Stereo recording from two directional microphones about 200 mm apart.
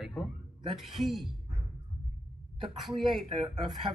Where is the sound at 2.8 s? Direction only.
Centre (ahead or behind).